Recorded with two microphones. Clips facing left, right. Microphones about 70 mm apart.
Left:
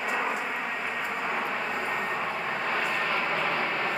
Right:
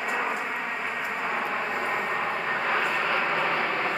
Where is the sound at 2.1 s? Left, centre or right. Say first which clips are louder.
Right 3 dB; right.